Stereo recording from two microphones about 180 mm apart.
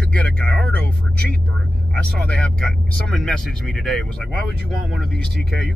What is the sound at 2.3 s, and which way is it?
Speech, 5° left (ahead or behind).